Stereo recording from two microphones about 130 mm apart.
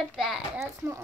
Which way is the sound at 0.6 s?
25° right (ahead or behind).